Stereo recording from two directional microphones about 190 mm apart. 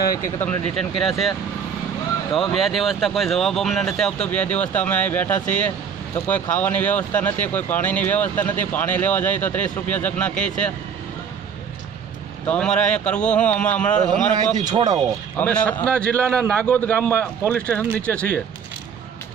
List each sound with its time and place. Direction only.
0.4 s speech: 5° left (ahead or behind)
2.5 s speech: centre (ahead or behind)
12.4 s speech: 5° left (ahead or behind)
14.3 s speech: 20° right (ahead or behind)
15.3 s speech: 5° left (ahead or behind)